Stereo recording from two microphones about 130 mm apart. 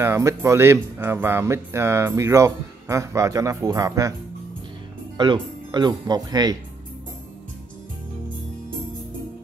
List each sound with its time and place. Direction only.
0.0 s speech: 20° right (ahead or behind)
5.1 s speech: 35° right (ahead or behind)